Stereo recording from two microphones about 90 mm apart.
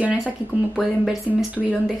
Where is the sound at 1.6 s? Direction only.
10° left (ahead or behind).